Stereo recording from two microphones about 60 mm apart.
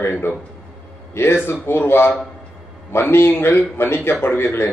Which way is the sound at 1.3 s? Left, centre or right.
Left.